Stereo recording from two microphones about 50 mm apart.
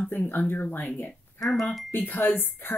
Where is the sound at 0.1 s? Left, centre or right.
Left.